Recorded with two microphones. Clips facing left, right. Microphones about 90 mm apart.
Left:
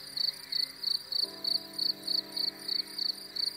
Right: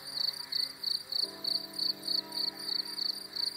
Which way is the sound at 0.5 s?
20° left (ahead or behind).